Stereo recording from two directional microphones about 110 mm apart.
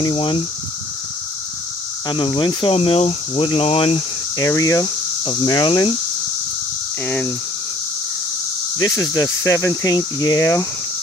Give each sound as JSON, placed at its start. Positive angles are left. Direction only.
{"t": 0.0, "sound": "speech", "side_deg": 50}
{"t": 2.0, "sound": "speech", "side_deg": 45}
{"t": 4.4, "sound": "speech", "side_deg": 30}
{"t": 5.2, "sound": "speech", "side_deg": 45}
{"t": 8.7, "sound": "speech", "side_deg": 35}